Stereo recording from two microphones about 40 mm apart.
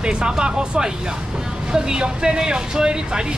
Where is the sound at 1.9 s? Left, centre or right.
Right.